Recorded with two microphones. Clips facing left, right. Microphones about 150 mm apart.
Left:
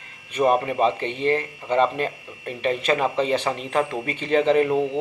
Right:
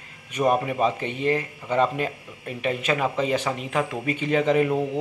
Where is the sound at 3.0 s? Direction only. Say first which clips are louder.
Left 2 dB; 30° left (ahead or behind).